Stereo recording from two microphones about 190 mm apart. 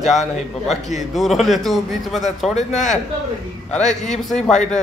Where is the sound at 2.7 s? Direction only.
40° left (ahead or behind).